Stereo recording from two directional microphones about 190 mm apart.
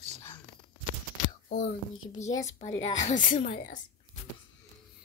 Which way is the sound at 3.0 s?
40° left (ahead or behind).